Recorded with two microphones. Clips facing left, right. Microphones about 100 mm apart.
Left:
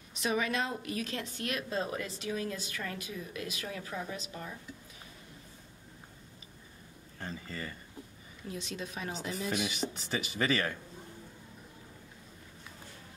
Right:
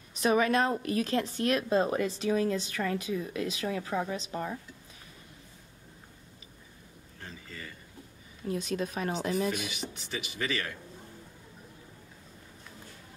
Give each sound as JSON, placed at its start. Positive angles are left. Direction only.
{"t": 0.2, "sound": "a woman's voice", "side_deg": -45}
{"t": 2.2, "sound": "a woman's voice", "side_deg": -35}
{"t": 3.9, "sound": "a woman's voice", "side_deg": -50}
{"t": 7.2, "sound": "a sound", "side_deg": 40}
{"t": 8.5, "sound": "a woman's voice", "side_deg": -50}
{"t": 9.8, "sound": "speech", "side_deg": 35}